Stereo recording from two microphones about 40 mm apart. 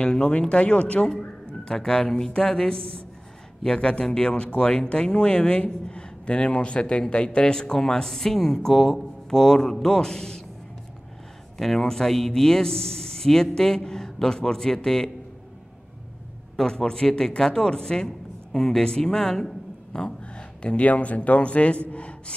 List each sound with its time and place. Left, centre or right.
0.0 s speech: left
11.5 s speech: centre
16.5 s a man's voice: centre; by 22.1 s left